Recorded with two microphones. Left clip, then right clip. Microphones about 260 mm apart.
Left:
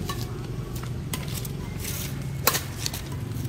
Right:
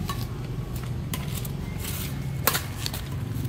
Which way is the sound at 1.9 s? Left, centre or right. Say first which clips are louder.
Left 1 dB; centre.